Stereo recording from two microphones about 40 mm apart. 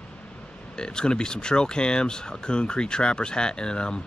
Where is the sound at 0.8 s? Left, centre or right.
Left.